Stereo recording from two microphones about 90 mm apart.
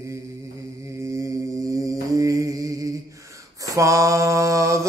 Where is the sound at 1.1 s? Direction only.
35° right (ahead or behind).